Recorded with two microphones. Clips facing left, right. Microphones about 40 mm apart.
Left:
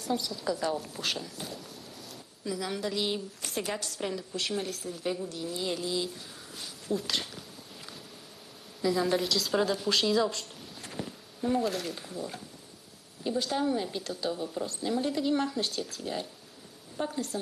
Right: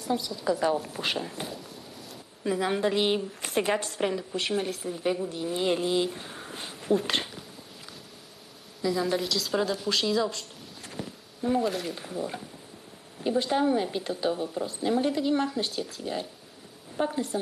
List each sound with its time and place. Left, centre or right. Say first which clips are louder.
0.0 s a woman's voice: right 3 dB; centre
0.9 s a woman's voice: right 4 dB; right
1.2 s speech: right 5 dB; right
1.5 s a sound: right 2 dB; centre
2.4 s a woman's voice: right 7 dB; right
5.6 s speech: right 7 dB; right
8.8 s a woman's voice: even; centre; by 14.5 s right
14.5 s a woman's voice: right 2 dB; centre
14.8 s a woman's voice: right 5 dB; right
15.1 s a woman's voice: right 2 dB; centre
16.9 s a woman's voice: right 5 dB; centre